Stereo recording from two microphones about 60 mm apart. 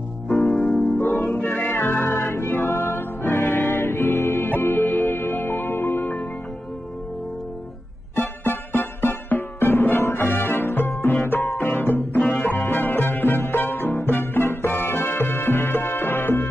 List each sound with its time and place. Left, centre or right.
0.3 s music: centre
0.9 s music: left
8.2 s music: left
12.3 s music: left
12.6 s music: left